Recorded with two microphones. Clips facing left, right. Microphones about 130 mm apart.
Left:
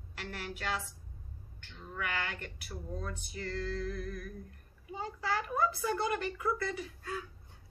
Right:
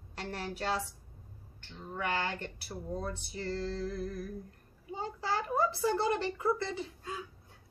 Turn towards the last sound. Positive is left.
turn(degrees=-20)  # may be behind; listen again after turning